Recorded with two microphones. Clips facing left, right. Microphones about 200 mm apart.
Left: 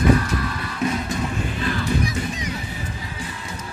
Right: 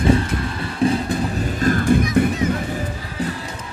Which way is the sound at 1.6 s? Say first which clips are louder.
Right 9 dB; 50° right (ahead or behind).